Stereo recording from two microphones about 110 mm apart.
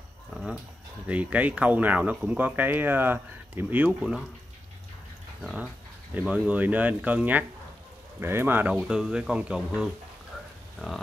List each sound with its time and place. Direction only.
1.0 s speech: 10° right (ahead or behind)
5.4 s speech: 5° right (ahead or behind)
8.8 s speech: 5° right (ahead or behind)